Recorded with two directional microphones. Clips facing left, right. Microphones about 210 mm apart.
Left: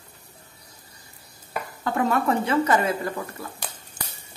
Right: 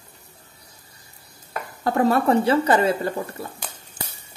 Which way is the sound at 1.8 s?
35° right (ahead or behind).